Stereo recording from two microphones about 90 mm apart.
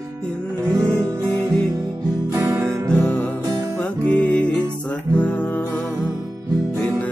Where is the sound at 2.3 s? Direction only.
30° right (ahead or behind).